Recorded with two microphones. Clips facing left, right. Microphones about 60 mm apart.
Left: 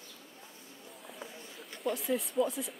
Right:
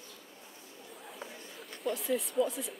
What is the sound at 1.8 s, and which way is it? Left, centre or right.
Speech, centre.